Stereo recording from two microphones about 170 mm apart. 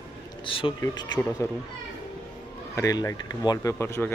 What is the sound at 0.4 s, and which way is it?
Speech, 30° left (ahead or behind).